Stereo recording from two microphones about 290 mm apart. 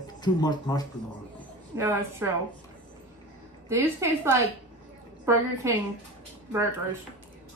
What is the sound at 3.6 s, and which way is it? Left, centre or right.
Speech, centre.